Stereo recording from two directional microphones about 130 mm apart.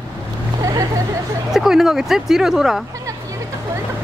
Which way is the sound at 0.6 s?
25° right (ahead or behind).